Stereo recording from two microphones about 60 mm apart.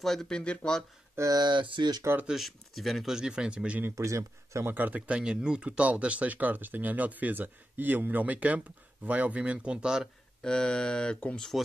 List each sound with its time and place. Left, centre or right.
0.0 s speech: centre
0.3 s speech: centre
1.1 s speech: right
2.2 s speech: centre
3.2 s speech: centre
3.9 s speech: right
4.6 s speech: right
5.2 s speech: centre
10.4 s speech: centre